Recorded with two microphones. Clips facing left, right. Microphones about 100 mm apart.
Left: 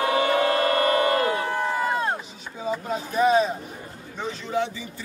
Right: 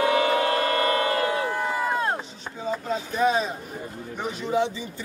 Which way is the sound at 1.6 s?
5° right (ahead or behind).